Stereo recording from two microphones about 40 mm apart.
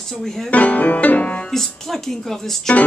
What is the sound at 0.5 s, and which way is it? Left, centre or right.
Music, left.